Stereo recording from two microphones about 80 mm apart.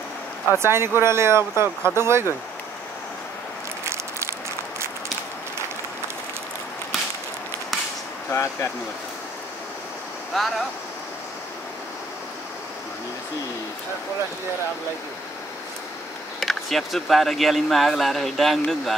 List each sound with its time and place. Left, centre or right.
0.5 s speech: right
3.8 s a sound: right
8.3 s speech: left
16.3 s speech: centre